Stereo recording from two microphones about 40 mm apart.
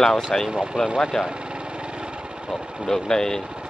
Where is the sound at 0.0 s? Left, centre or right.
Centre.